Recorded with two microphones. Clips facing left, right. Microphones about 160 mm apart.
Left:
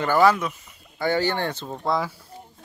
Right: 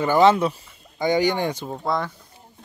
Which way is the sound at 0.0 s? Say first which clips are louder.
Right 3 dB; 20° right (ahead or behind).